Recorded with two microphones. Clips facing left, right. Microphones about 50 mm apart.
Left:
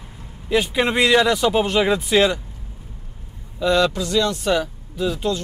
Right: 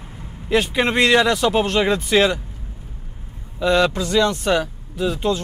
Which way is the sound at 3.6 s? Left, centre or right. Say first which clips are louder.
Right 1 dB; centre.